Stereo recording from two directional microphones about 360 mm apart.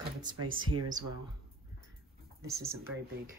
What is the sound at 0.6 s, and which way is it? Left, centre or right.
Speech, right.